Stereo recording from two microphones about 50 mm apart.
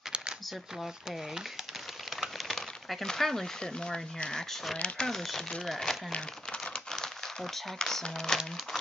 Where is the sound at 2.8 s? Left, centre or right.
Centre.